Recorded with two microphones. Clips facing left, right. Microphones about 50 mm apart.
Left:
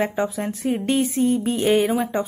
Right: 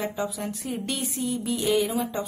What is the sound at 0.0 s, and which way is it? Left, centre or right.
A woman's voice, left.